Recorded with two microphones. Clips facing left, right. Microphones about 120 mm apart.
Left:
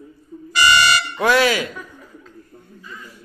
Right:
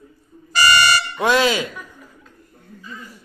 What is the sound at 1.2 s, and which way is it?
Speech, 20° right (ahead or behind).